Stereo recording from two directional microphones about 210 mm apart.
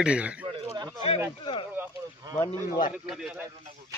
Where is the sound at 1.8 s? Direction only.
10° right (ahead or behind).